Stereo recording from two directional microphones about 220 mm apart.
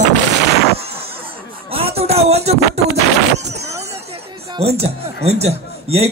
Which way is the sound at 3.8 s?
25° right (ahead or behind).